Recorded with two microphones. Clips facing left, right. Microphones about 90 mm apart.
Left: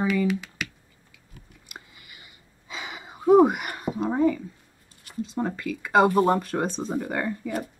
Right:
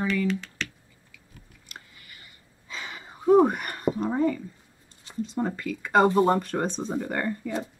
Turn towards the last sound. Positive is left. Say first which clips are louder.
# left 1 dB
turn(degrees=5)  # may be behind; listen again after turning